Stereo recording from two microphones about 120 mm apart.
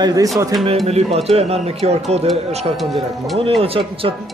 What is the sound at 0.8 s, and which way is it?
A man's voice, 55° right (ahead or behind).